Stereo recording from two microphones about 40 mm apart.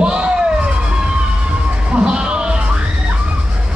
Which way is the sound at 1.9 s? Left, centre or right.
Right.